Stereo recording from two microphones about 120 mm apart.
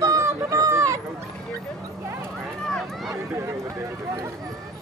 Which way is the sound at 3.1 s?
20° right (ahead or behind).